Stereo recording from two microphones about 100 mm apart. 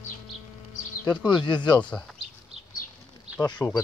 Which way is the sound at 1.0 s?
50° left (ahead or behind).